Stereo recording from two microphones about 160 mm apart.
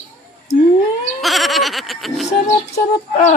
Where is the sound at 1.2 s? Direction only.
Centre (ahead or behind).